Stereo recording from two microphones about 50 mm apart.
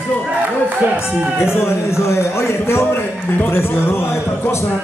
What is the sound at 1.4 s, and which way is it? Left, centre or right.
A man's voice, left.